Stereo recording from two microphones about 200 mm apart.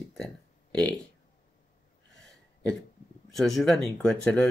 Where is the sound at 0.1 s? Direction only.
5° left (ahead or behind).